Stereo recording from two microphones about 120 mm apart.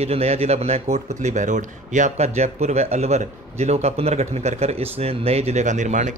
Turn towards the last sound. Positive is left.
turn(degrees=-90)